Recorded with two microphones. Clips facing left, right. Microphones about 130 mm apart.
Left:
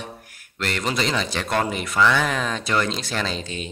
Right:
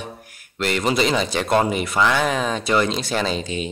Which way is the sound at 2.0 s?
20° right (ahead or behind).